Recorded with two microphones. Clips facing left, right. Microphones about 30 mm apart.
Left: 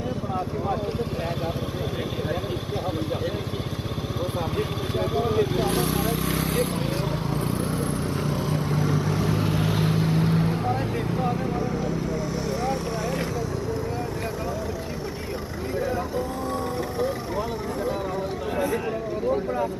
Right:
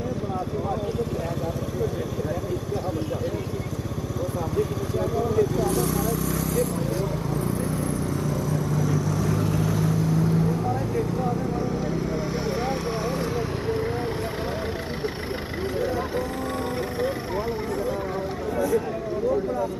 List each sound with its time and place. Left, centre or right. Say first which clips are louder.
4.6 s vehicle: right 4 dB; left